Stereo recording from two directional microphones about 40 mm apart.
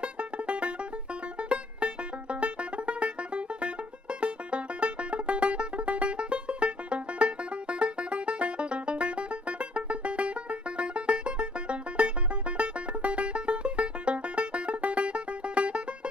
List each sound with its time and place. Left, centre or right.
0.0 s music: right